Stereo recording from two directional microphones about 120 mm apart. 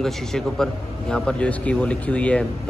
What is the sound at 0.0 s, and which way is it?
A man's voice, 5° left (ahead or behind).